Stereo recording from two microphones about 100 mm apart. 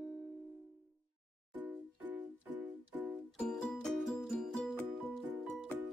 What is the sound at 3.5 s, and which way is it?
Music, 5° left (ahead or behind).